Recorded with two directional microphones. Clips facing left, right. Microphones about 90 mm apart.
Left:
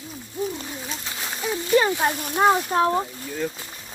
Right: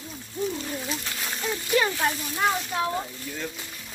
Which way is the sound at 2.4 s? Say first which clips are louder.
Left 7 dB; 35° left (ahead or behind).